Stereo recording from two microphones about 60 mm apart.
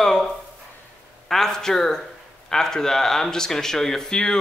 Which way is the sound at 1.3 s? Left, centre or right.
Centre.